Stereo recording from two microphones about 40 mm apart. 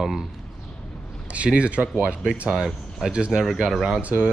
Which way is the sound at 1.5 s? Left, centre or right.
Right.